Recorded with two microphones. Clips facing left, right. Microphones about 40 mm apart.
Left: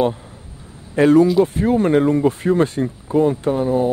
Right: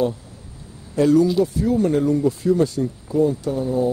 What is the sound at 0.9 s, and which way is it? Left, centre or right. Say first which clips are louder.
Speech: left 4 dB; left.